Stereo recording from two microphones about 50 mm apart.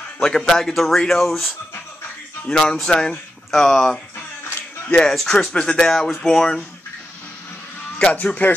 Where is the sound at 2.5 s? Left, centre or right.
Centre.